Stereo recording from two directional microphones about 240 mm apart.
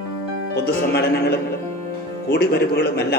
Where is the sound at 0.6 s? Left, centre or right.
Left.